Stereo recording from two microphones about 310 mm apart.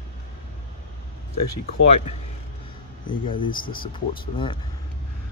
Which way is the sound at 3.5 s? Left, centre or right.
Left.